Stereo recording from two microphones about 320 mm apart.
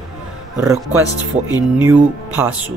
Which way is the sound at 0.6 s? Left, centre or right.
Centre.